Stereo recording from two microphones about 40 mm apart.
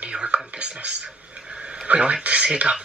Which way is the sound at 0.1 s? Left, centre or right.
Right.